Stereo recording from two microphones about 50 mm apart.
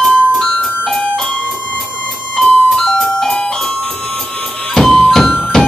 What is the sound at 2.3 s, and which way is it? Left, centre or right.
Music, centre.